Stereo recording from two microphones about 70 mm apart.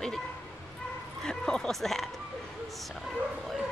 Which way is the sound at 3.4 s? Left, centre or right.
Centre.